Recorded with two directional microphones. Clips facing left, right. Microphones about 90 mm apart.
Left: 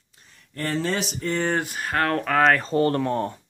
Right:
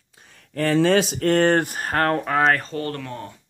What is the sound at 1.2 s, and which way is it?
Speech, 75° right (ahead or behind).